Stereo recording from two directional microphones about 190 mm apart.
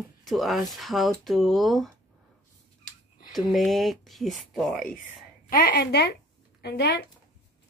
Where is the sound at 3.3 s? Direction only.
Centre (ahead or behind).